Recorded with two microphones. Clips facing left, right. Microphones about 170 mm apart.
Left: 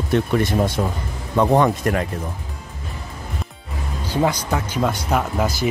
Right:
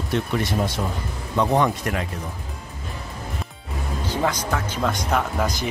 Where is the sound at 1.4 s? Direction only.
50° left (ahead or behind).